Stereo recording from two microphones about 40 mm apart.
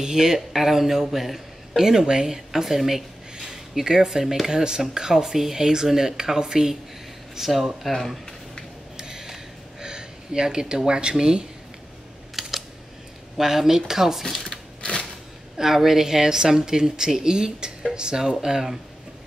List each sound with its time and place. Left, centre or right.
0.0 s speech: centre
1.8 s speech: centre
8.9 s a sound: centre
10.9 s speech: right
12.4 s computer keyboard: centre
13.4 s speech: centre
14.4 s a sound: left
15.5 s speech: centre